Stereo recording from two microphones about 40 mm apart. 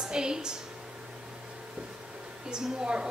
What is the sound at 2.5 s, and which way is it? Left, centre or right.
Speech, centre.